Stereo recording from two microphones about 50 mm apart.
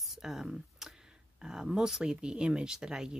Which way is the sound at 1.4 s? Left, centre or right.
Centre.